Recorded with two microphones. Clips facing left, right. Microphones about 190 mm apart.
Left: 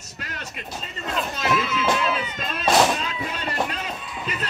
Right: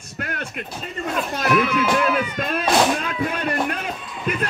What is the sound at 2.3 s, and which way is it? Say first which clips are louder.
Music: right 7 dB; 55° right (ahead or behind).